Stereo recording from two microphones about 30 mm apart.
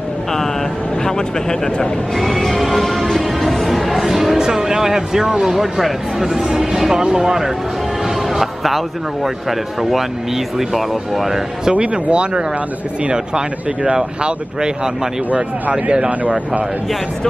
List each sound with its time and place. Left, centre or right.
1.0 s speech: left
2.1 s music: centre
4.4 s a man's voice: right; by 11.4 s centre
11.8 s speech: right
15.7 s speech: right
16.1 s speech: right